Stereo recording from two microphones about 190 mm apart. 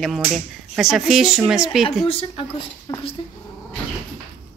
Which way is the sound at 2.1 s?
30° left (ahead or behind).